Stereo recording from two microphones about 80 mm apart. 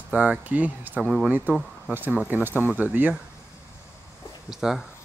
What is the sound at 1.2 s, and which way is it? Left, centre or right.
Speech, right.